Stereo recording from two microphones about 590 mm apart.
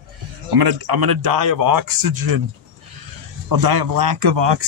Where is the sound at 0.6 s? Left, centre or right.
Right.